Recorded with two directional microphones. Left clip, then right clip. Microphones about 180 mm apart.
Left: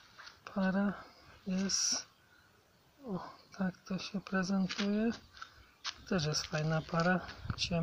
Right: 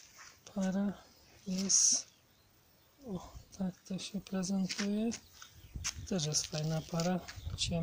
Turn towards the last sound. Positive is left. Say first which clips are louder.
# left 1 dB
turn(degrees=-5)  # may be behind; listen again after turning